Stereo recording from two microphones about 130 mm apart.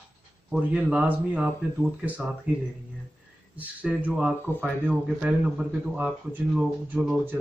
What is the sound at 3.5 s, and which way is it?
Speech, 10° right (ahead or behind).